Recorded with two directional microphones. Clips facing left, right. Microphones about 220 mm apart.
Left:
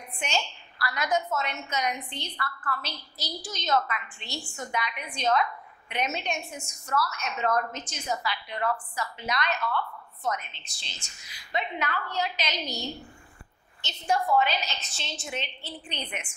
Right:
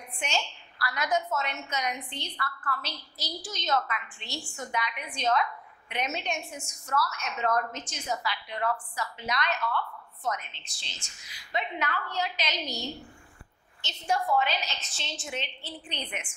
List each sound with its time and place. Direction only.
0.2 s a woman's voice: 10° left (ahead or behind)
7.0 s a woman's voice: 25° left (ahead or behind)
13.8 s a woman's voice: 15° left (ahead or behind)
14.2 s a woman's voice: 25° left (ahead or behind)
14.5 s a woman's voice: 10° left (ahead or behind)